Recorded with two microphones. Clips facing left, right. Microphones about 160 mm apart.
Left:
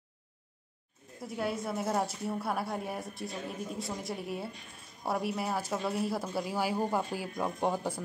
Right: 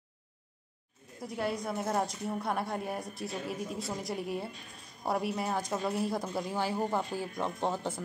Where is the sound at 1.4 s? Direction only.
Centre (ahead or behind).